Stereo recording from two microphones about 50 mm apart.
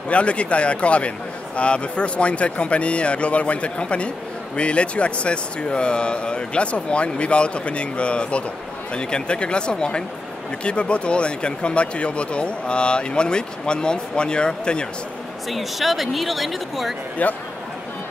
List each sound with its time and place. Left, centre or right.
0.1 s speech: left
15.5 s speech: centre
17.2 s speech: left